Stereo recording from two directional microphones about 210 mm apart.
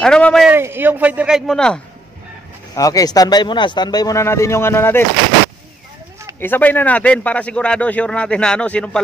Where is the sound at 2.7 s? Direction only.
15° left (ahead or behind).